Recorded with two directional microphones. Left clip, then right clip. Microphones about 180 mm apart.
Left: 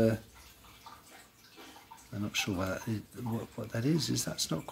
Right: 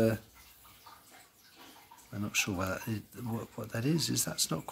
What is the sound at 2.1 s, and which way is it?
Speech, 15° right (ahead or behind).